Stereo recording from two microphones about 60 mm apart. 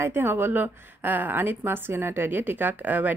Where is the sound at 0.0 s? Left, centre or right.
Right.